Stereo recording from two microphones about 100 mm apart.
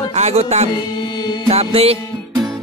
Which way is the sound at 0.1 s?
90° right.